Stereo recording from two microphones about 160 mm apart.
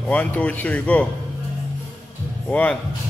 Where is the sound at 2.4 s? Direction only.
10° left (ahead or behind).